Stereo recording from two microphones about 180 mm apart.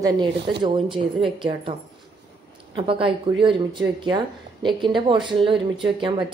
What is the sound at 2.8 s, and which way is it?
Speech, 30° right (ahead or behind).